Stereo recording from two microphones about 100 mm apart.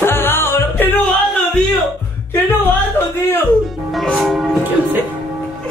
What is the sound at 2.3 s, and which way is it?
Speech, 20° left (ahead or behind).